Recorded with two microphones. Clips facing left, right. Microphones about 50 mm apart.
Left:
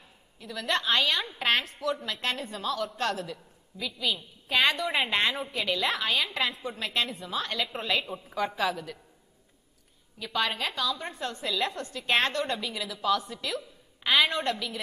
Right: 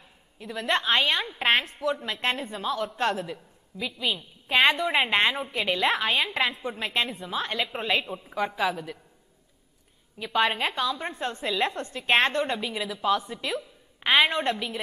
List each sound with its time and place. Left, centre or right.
0.4 s a woman's voice: right
10.1 s a woman's voice: right